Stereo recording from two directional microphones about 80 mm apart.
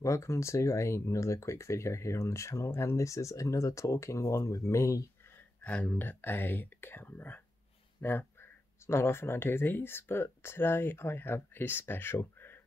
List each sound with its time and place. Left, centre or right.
0.0 s speech: left
5.2 s a sound: left
5.7 s speech: centre